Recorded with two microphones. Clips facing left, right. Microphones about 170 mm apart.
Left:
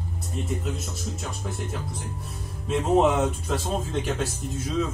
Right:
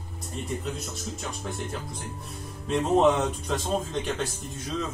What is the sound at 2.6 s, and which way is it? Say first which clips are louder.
Speech: left 1 dB; centre (ahead or behind).